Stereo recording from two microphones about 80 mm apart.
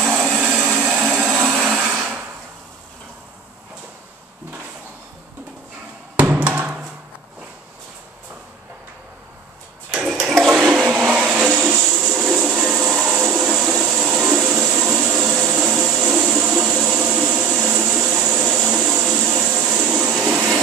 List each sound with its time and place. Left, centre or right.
0.2 s blender: centre
0.7 s a sound: centre
1.6 s blender: centre
6.1 s music: centre
9.8 s toilet flush: centre
10.5 s vehicle: centre
11.7 s a sound: centre
14.8 s vacuum cleaner: centre
15.9 s a sound: centre
19.5 s vacuum cleaner: centre